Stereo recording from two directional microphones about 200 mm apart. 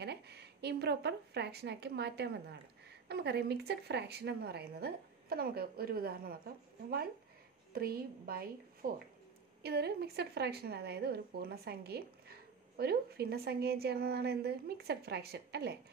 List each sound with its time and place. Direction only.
0.0 s a woman's voice: 55° right (ahead or behind)